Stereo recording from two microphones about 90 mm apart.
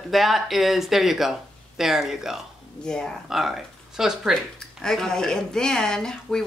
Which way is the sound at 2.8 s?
10° left (ahead or behind).